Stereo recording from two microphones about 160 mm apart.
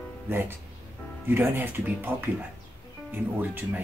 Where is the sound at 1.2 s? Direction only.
15° right (ahead or behind).